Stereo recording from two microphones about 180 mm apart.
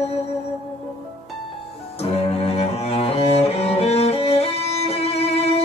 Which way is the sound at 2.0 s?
35° left (ahead or behind).